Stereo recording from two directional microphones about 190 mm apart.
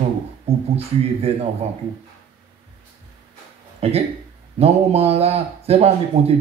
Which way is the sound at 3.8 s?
30° right (ahead or behind).